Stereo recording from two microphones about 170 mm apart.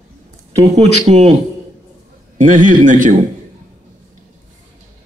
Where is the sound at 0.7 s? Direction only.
40° right (ahead or behind).